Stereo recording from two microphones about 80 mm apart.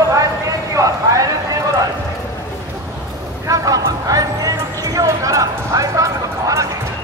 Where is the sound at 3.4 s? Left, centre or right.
Right.